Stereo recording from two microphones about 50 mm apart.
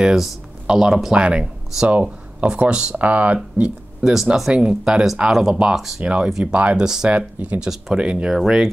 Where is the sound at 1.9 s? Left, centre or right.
Right.